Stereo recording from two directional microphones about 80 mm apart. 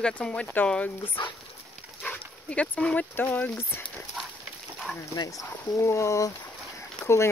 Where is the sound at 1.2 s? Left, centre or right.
Left.